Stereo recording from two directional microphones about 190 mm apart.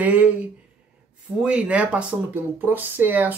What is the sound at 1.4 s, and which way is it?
Speech, 5° right (ahead or behind).